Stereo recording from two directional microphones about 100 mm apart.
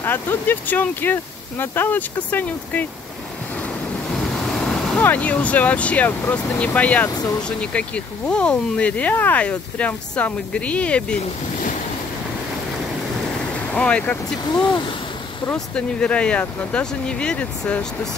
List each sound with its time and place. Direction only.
0.0 s speech: 20° left (ahead or behind)
4.1 s waves: 5° left (ahead or behind)
4.9 s speech: 15° left (ahead or behind)
13.7 s speech: 10° left (ahead or behind)
14.5 s speech: 45° left (ahead or behind)
15.5 s speech: 10° left (ahead or behind)